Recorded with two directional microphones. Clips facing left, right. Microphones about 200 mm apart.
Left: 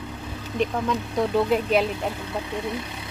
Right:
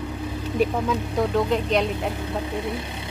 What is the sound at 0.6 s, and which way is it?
Speech, centre (ahead or behind).